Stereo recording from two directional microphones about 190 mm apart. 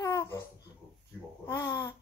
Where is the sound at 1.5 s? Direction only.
15° left (ahead or behind).